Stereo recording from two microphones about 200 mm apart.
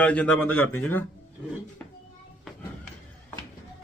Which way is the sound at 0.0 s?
5° left (ahead or behind).